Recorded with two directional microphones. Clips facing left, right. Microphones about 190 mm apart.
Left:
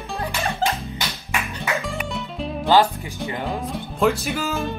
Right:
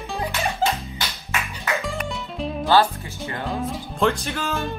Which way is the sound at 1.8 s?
Centre (ahead or behind).